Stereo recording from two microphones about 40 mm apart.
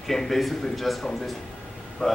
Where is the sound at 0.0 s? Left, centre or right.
Centre.